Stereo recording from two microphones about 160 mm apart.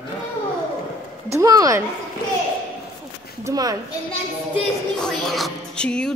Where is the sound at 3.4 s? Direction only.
20° right (ahead or behind).